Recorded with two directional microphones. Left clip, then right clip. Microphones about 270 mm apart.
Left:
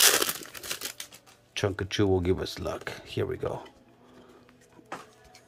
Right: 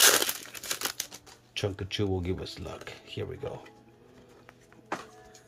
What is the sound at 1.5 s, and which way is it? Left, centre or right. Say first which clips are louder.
Speech: left 4 dB; centre.